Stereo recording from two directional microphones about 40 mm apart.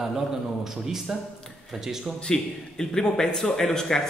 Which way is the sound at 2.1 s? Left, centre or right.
Centre.